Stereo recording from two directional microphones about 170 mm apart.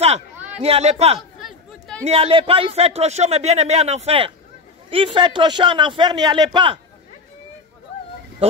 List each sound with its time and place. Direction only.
0.6 s speech: 35° right (ahead or behind)
1.4 s a sound: 5° left (ahead or behind)
2.0 s a man's voice: 35° right (ahead or behind)